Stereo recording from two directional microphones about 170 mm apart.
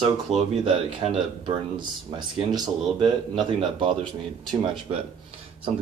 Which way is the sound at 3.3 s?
30° right (ahead or behind).